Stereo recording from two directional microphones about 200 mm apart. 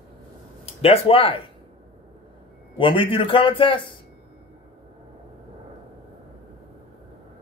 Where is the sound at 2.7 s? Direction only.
25° left (ahead or behind).